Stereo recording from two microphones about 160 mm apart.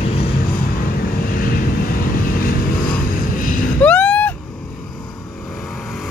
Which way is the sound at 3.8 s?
10° left (ahead or behind).